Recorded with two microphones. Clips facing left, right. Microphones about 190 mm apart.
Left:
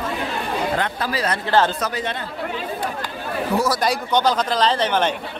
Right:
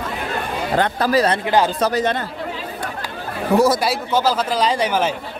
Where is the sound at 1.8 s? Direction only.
40° right (ahead or behind).